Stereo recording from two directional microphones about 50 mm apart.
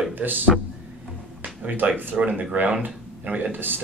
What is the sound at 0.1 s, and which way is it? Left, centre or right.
Speech, right.